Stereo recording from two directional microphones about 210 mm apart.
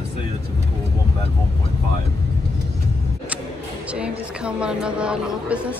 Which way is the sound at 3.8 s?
5° right (ahead or behind).